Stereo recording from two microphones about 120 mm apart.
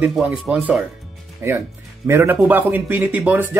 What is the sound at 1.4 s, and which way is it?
Speech, 25° right (ahead or behind).